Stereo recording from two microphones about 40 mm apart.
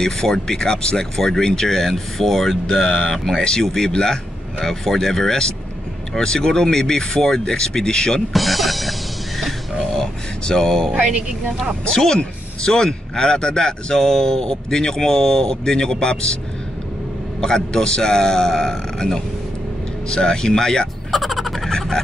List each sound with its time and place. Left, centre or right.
0.0 s speech: centre
8.3 s speech: centre
9.9 s a sound: centre
10.9 s speech: right
11.9 s speech: centre
17.4 s speech: centre
21.1 s frog: centre